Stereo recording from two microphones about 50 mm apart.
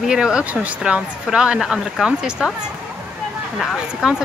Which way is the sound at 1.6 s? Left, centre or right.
Centre.